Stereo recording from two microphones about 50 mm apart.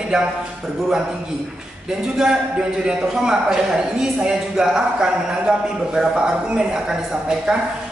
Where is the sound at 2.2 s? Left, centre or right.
Centre.